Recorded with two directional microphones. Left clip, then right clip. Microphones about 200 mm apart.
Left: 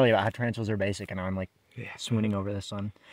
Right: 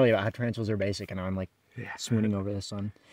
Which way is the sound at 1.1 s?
10° right (ahead or behind).